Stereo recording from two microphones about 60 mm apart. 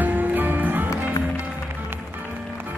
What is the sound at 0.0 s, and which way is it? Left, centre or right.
Music, right.